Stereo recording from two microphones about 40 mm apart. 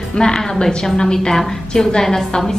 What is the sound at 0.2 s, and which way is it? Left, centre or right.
A woman's voice, centre.